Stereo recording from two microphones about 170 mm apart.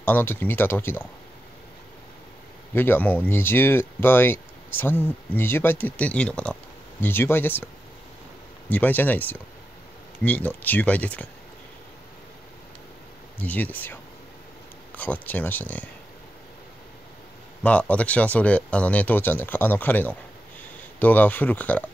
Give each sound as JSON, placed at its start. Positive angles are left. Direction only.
{"t": 0.0, "sound": "speech", "side_deg": 10}
{"t": 2.7, "sound": "speech", "side_deg": 10}
{"t": 13.4, "sound": "speech", "side_deg": 10}
{"t": 15.0, "sound": "speech", "side_deg": 10}
{"t": 17.6, "sound": "speech", "side_deg": 10}